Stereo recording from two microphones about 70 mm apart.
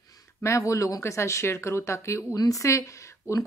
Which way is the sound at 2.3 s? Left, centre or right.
Left.